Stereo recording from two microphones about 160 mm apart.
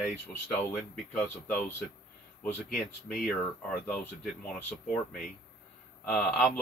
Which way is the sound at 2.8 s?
Centre (ahead or behind).